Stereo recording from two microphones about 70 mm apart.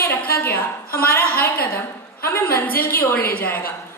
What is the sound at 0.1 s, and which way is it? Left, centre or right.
Speech, left.